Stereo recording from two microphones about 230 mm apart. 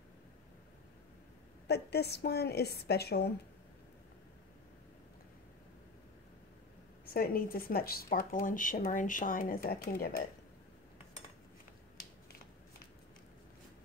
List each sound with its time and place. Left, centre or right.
1.7 s a woman's voice: left
7.2 s speech: left